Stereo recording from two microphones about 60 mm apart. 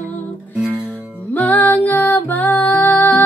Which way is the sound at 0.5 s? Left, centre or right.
Right.